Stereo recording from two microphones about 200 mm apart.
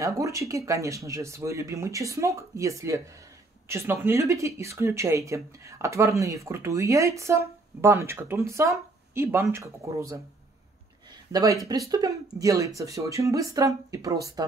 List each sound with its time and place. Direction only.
0.0 s speech: 15° right (ahead or behind)
11.6 s speech: 20° right (ahead or behind)